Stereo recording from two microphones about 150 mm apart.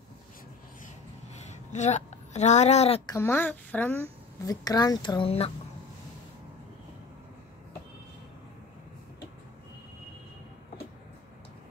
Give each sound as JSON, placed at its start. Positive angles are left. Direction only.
{"t": 1.4, "sound": "a woman's voice", "side_deg": 50}
{"t": 3.1, "sound": "a woman's voice", "side_deg": 15}
{"t": 4.4, "sound": "speech", "side_deg": 25}